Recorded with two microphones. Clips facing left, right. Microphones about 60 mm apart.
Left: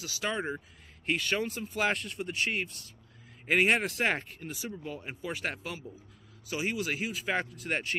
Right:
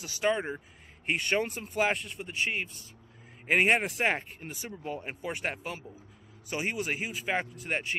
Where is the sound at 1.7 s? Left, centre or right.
Centre.